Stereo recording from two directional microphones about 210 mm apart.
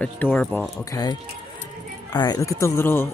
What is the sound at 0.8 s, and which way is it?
Speech, 15° left (ahead or behind).